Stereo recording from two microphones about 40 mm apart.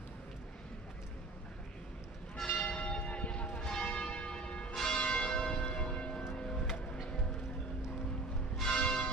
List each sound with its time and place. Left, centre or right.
2.4 s church bell: left
6.3 s music: left
8.7 s church bell: left